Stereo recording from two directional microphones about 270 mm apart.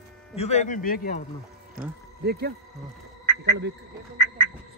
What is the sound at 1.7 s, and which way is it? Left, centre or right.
Speech, right.